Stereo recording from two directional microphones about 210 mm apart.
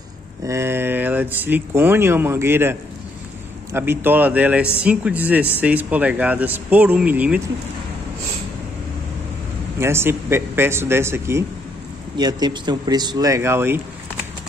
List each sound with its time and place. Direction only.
0.5 s speech: 10° right (ahead or behind)
9.8 s speech: 10° right (ahead or behind)